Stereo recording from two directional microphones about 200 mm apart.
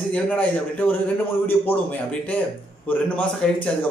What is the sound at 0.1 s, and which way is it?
A man's voice, 10° left (ahead or behind).